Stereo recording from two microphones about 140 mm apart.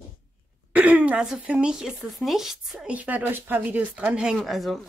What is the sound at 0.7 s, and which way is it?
Speech, 10° right (ahead or behind).